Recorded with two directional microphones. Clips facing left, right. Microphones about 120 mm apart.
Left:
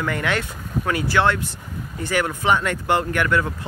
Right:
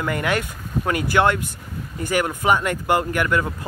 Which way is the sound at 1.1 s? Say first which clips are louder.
Right 1 dB; 15° right (ahead or behind).